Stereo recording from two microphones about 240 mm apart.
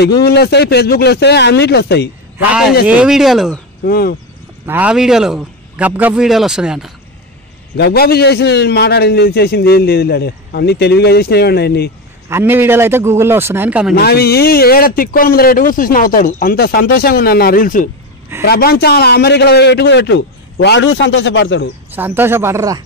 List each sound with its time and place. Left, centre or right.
0.0 s a man's voice: left
2.3 s a man's voice: centre
3.8 s speech: left
4.6 s a man's voice: centre
7.7 s a man's voice: left
12.3 s a man's voice: centre
13.9 s a man's voice: left
21.9 s a man's voice: centre